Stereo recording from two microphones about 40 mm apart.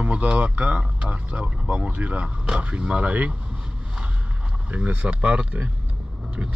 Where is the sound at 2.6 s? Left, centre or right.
Right.